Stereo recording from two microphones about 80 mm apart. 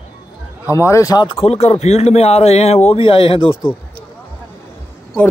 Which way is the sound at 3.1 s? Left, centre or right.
Left.